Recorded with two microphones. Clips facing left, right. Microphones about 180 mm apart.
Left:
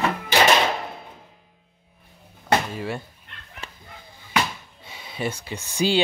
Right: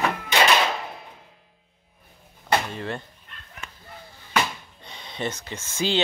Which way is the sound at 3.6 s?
30° left (ahead or behind).